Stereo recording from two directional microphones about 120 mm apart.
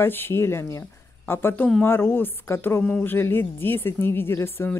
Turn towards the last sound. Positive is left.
turn(degrees=20)  # may be behind; listen again after turning